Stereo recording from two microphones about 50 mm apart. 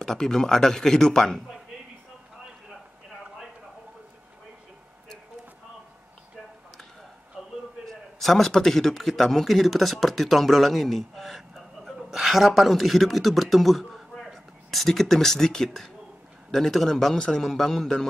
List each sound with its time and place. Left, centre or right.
0.0 s a man's voice: centre
7.4 s a sound: centre
7.8 s a man's voice: centre